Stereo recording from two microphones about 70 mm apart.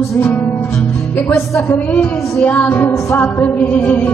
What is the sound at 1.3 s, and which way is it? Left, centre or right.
Music, left.